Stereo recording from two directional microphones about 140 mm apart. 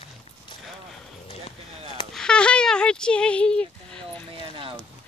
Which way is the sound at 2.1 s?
5° left (ahead or behind).